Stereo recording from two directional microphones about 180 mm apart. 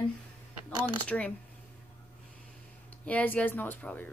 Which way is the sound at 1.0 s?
5° left (ahead or behind).